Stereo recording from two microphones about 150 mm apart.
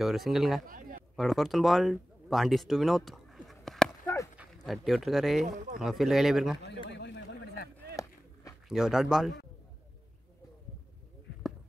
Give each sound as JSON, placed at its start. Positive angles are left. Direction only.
{"t": 0.0, "sound": "speech", "side_deg": 0}
{"t": 0.7, "sound": "a sound", "side_deg": -65}
{"t": 1.1, "sound": "speech", "side_deg": 0}
{"t": 7.9, "sound": "run", "side_deg": 20}
{"t": 8.6, "sound": "speech", "side_deg": -5}